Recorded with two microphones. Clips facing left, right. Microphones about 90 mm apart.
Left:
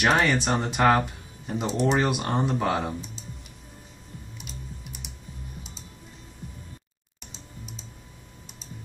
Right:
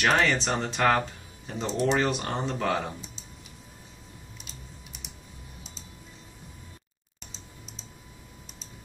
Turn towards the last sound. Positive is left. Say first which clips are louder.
# left 4 dB
turn(degrees=5)  # may be behind; listen again after turning